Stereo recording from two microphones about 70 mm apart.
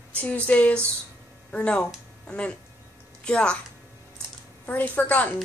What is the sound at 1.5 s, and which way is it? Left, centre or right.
A woman's voice, centre.